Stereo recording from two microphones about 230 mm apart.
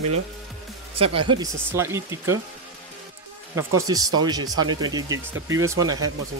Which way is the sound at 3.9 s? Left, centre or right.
Centre.